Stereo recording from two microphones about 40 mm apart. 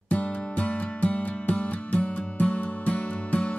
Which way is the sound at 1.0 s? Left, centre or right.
Left.